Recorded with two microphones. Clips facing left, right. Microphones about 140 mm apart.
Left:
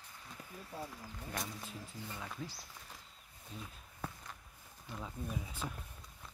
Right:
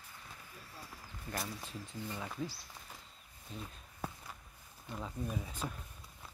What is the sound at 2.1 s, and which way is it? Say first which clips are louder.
Speech: right 4 dB; 5° right (ahead or behind).